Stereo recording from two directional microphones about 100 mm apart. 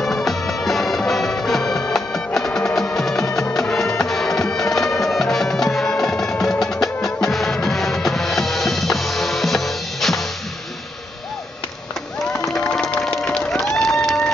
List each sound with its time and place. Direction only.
0.0 s music: centre (ahead or behind)
4.0 s bagpipes: 5° left (ahead or behind)
12.3 s crowd: 5° left (ahead or behind)